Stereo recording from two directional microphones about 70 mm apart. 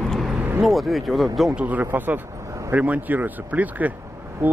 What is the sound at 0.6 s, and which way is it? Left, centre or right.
Speech, centre.